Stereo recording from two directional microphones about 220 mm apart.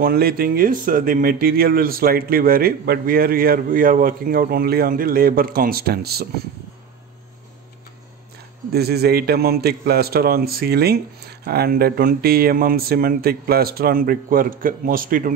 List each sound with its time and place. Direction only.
0.0 s speech: 45° right (ahead or behind)
8.7 s a man's voice: 45° right (ahead or behind)